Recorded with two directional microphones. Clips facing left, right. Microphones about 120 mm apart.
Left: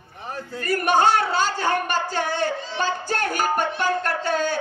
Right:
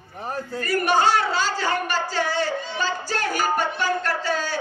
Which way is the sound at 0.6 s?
55° left (ahead or behind).